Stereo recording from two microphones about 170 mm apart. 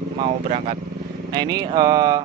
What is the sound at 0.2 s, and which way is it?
Speech, 35° right (ahead or behind).